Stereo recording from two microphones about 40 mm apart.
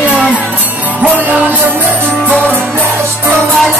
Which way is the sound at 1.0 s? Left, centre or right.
Right.